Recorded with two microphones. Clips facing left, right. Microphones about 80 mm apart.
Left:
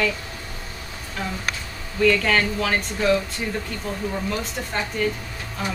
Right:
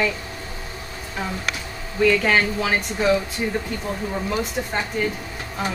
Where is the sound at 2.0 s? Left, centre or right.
Centre.